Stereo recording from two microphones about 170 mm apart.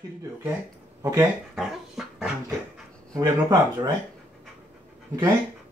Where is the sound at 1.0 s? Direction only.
15° right (ahead or behind).